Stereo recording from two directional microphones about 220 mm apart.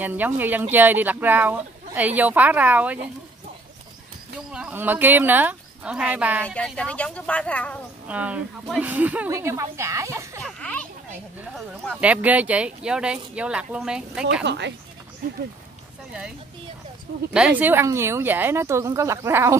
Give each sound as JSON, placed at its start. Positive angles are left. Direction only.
{"t": 0.0, "sound": "speech", "side_deg": -10}
{"t": 4.5, "sound": "speech", "side_deg": -5}
{"t": 6.4, "sound": "speech", "side_deg": 5}
{"t": 8.1, "sound": "speech", "side_deg": -5}
{"t": 10.4, "sound": "a sound", "side_deg": 5}
{"t": 11.5, "sound": "speech", "side_deg": 0}
{"t": 14.4, "sound": "speech", "side_deg": -55}
{"t": 16.1, "sound": "speech", "side_deg": -5}